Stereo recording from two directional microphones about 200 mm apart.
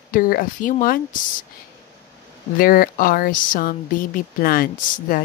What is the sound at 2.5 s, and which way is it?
Speech, 45° left (ahead or behind).